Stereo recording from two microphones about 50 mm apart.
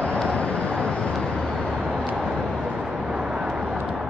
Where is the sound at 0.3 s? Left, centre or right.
Left.